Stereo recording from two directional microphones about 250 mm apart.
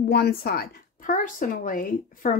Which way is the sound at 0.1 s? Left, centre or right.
Left.